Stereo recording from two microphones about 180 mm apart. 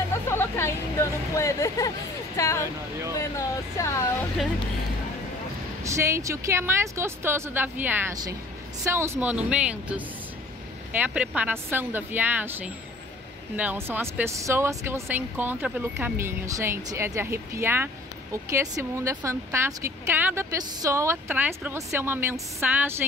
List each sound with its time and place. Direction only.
0.1 s speech: 15° left (ahead or behind)
5.9 s a woman's voice: 15° right (ahead or behind)